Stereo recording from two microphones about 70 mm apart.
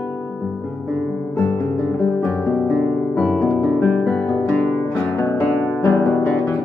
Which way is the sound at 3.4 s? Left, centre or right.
Centre.